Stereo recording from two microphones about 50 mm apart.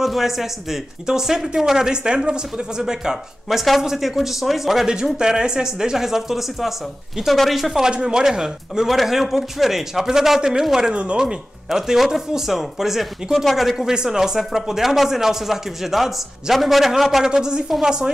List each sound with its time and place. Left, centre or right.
0.0 s speech: centre
3.4 s speech: centre
4.9 s speech: centre
11.0 s speech: centre
11.7 s speech: centre
17.3 s speech: centre